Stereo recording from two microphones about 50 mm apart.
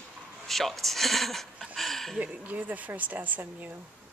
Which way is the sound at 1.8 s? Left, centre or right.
Centre.